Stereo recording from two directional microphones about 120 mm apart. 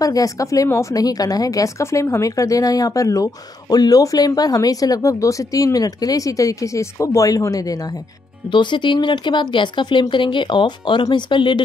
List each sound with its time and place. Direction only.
0.0 s a woman's voice: 30° left (ahead or behind)
8.5 s speech: 40° left (ahead or behind)